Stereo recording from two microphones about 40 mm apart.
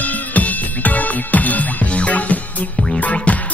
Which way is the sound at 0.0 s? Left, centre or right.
Left.